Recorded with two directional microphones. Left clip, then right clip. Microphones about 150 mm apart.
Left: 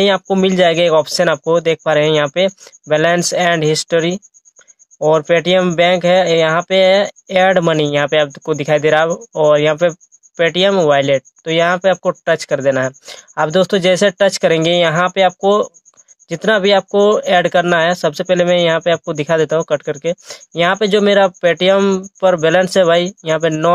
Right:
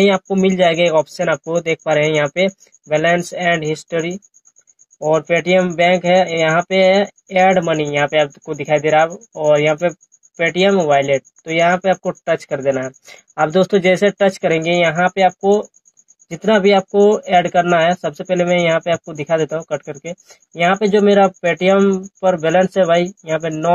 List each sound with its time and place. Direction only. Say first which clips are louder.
0.0 s speech: left 1 dB; 30° left (ahead or behind)